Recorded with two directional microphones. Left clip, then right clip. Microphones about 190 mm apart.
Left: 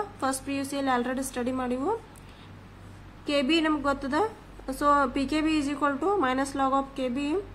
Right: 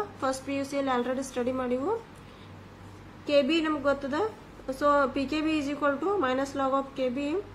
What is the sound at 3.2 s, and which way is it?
A woman's voice, 40° left (ahead or behind).